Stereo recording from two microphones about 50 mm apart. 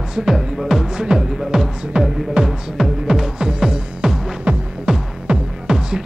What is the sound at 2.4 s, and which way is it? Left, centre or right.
Music, centre.